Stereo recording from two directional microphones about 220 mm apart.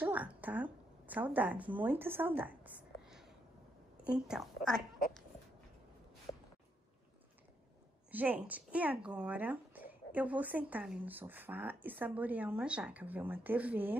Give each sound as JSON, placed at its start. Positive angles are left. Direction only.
{"t": 0.0, "sound": "a woman's voice", "side_deg": -5}
{"t": 6.3, "sound": "a sound", "side_deg": 20}
{"t": 8.1, "sound": "speech", "side_deg": -10}